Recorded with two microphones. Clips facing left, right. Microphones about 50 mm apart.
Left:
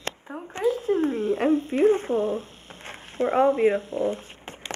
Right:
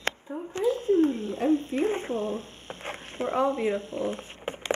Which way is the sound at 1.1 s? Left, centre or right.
Left.